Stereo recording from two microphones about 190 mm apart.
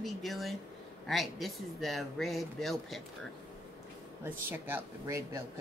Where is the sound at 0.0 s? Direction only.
Centre (ahead or behind).